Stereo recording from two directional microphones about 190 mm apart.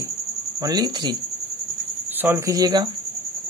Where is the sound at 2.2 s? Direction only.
15° right (ahead or behind).